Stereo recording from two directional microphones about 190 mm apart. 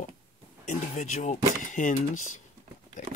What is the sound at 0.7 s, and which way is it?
Speech, 40° left (ahead or behind).